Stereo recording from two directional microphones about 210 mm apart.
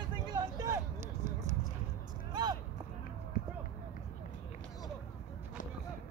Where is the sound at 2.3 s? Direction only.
20° right (ahead or behind).